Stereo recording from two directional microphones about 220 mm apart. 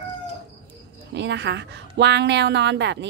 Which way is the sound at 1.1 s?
50° right (ahead or behind).